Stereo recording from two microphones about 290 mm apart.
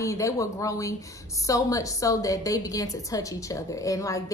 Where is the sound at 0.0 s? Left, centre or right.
Centre.